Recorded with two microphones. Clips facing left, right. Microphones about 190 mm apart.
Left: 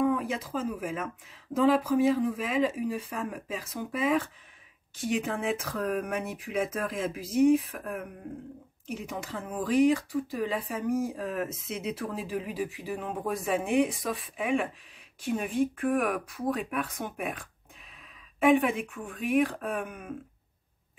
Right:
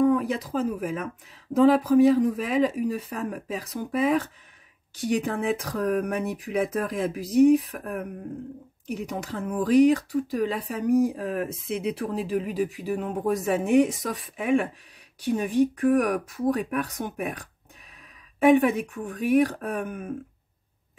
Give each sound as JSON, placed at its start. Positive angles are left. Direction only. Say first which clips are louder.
{"t": 0.0, "sound": "a sound", "louder": "right 5 dB", "side_deg": -40}
{"t": 0.7, "sound": "speech", "louder": "right 4 dB", "side_deg": -45}
{"t": 11.1, "sound": "speech", "louder": "right 3 dB", "side_deg": -50}
{"t": 11.6, "sound": "speech", "louder": "right 5 dB", "side_deg": -35}